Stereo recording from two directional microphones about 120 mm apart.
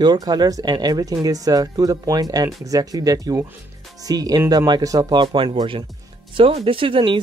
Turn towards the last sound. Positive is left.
turn(degrees=-45)  # may be behind; listen again after turning